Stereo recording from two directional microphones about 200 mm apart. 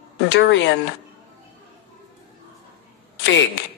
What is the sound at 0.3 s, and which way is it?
Speech, 70° left (ahead or behind).